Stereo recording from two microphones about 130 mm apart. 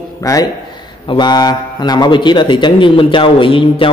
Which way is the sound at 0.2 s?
25° left (ahead or behind).